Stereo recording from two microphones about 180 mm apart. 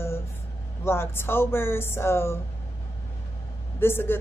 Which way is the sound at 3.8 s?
10° left (ahead or behind).